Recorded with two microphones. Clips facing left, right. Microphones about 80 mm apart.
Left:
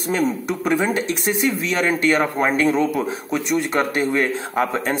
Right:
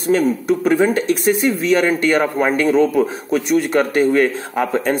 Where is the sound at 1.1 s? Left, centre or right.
Right.